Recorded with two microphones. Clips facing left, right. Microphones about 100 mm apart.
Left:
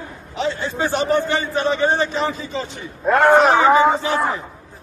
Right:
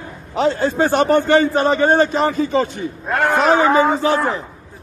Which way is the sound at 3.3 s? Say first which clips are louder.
Right 2 dB; 40° left (ahead or behind).